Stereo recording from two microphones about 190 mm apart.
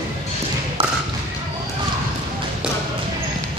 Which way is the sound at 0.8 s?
30° right (ahead or behind).